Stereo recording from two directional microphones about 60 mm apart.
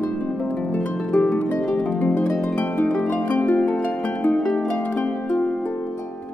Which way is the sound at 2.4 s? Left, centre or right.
Left.